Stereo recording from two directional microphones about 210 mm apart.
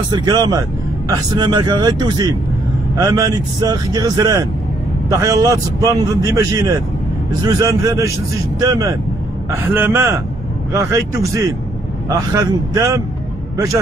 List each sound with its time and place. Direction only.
0.1 s speech: 20° right (ahead or behind)